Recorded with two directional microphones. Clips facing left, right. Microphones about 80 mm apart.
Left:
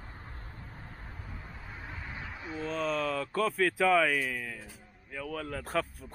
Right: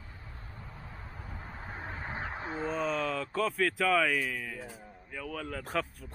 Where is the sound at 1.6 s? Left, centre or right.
Right.